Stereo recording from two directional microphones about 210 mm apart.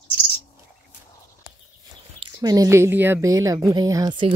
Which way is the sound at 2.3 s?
15° right (ahead or behind).